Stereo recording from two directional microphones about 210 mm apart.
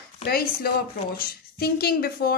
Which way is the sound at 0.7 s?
50° left (ahead or behind).